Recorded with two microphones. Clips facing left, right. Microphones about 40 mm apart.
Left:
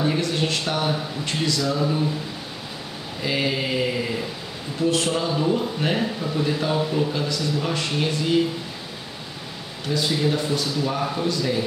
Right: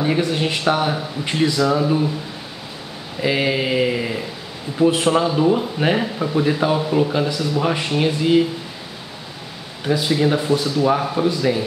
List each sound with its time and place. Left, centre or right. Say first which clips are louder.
0.0 s speech: right 3 dB; centre
3.2 s speech: right 5 dB; centre
9.8 s speech: right 5 dB; centre